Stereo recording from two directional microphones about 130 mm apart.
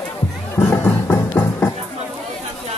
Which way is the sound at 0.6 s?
15° left (ahead or behind).